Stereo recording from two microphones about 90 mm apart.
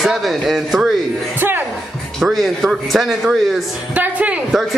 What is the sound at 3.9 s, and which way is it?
Speech, 15° right (ahead or behind).